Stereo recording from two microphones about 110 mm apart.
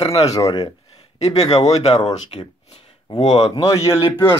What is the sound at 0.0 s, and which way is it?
Speech, 65° left (ahead or behind).